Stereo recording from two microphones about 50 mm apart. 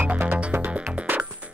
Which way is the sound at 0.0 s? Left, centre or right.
Right.